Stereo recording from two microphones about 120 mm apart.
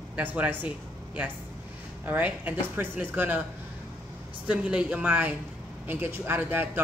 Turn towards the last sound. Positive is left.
turn(degrees=-15)  # may be behind; listen again after turning